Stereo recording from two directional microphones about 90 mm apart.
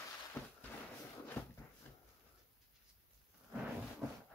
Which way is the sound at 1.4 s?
30° left (ahead or behind).